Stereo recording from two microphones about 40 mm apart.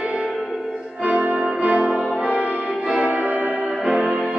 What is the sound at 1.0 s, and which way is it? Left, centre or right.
Music, right.